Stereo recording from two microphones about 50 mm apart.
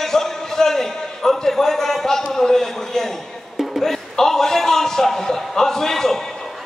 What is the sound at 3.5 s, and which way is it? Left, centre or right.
Music, centre.